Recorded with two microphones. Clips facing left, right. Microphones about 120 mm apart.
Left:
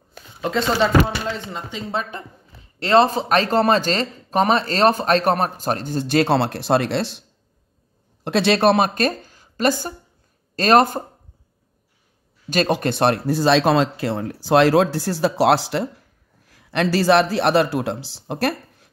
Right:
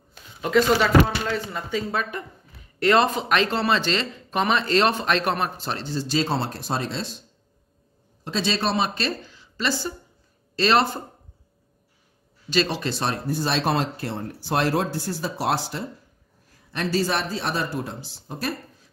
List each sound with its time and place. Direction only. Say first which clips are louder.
0.4 s a woman's voice: even; 30° left (ahead or behind); by 11.0 s 45° left (ahead or behind)
12.4 s a man's voice: left 4 dB; 50° left (ahead or behind); by 18.2 s 90° left
18.2 s a sound: left 7 dB; 65° left (ahead or behind)